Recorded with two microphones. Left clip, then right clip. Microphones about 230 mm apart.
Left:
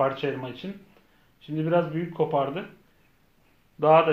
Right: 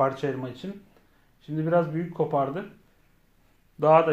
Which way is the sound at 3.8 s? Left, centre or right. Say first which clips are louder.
Even; right.